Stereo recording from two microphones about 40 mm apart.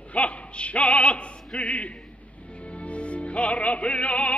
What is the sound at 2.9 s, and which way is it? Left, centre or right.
Music, left.